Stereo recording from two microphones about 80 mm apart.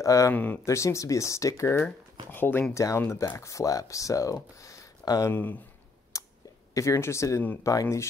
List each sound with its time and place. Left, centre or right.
0.0 s speech: left
0.3 s speech: left
0.7 s speech: left
2.2 s speech: left
2.7 s speech: left
5.3 s speech: left
6.1 s a sound: left
6.7 s speech: left